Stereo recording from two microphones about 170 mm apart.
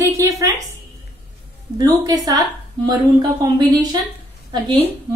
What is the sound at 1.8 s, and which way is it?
A woman's voice, 20° right (ahead or behind).